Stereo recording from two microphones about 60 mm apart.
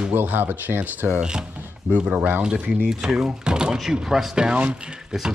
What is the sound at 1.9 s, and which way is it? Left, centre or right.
Speech, right.